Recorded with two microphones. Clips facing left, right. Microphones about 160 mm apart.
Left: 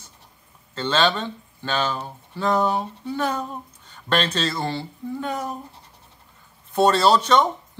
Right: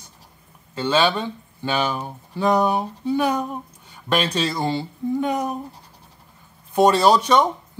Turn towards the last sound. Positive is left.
turn(degrees=-10)  # may be behind; listen again after turning